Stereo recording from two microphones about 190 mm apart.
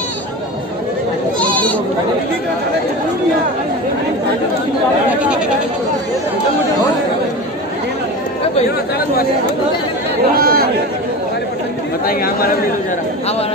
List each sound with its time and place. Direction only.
1.4 s bleat: 5° left (ahead or behind)
10.3 s speech: 50° right (ahead or behind)